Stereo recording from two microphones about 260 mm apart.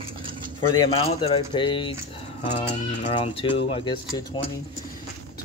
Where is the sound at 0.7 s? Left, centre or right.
Centre.